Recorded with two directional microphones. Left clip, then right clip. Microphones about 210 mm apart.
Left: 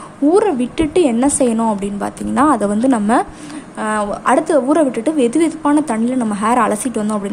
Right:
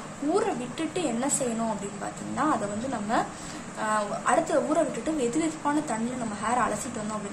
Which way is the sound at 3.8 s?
40° left (ahead or behind).